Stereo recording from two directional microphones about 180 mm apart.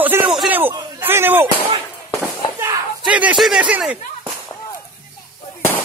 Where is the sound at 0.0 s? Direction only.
5° right (ahead or behind).